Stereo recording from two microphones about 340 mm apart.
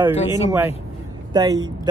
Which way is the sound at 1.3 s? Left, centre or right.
Centre.